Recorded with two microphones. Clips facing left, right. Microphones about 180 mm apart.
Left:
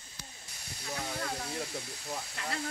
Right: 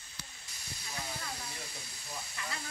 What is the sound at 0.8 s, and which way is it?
Hiss, 65° left (ahead or behind).